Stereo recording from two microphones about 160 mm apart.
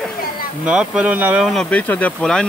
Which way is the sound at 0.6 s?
5° right (ahead or behind).